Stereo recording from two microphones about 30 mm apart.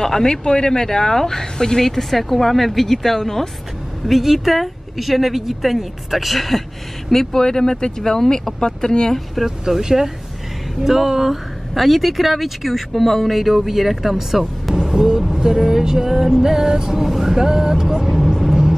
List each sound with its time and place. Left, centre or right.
0.0 s speech: left
4.0 s speech: centre
7.1 s speech: centre
9.7 s speech: centre
14.7 s vehicle: centre
15.3 s speech: centre
17.9 s vehicle: centre
18.5 s vehicle: centre